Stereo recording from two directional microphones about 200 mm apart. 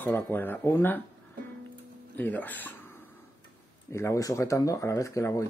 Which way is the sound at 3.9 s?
15° left (ahead or behind).